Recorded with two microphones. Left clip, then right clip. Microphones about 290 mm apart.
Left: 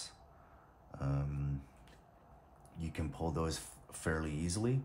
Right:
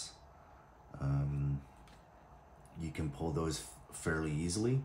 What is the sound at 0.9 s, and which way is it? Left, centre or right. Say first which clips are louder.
Speech: even; centre.